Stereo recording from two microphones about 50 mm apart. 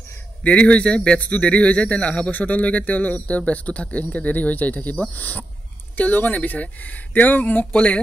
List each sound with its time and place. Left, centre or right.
0.4 s a man's voice: left